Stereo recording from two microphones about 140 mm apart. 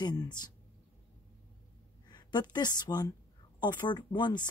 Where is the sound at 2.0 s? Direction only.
30° left (ahead or behind).